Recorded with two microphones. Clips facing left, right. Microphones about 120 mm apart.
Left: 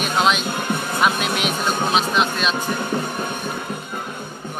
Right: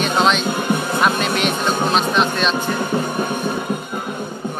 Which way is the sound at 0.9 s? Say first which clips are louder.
Even; 5° left (ahead or behind).